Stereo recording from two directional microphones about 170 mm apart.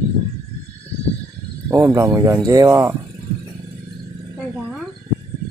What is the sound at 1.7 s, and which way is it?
Speech, 20° right (ahead or behind).